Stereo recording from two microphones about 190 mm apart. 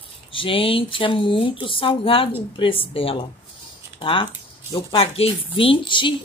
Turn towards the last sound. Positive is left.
turn(degrees=25)  # may be behind; listen again after turning